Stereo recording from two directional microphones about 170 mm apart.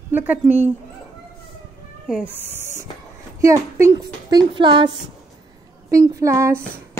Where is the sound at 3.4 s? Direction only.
20° right (ahead or behind).